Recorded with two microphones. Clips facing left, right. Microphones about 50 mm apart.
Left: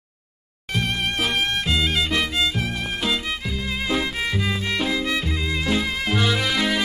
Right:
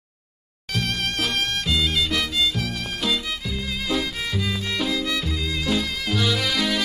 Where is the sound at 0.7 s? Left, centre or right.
Left.